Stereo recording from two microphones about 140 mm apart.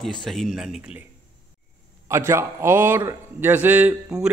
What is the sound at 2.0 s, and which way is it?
A man's voice, 20° right (ahead or behind).